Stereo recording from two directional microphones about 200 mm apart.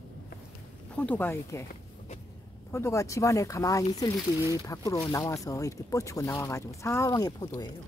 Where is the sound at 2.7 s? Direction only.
15° left (ahead or behind).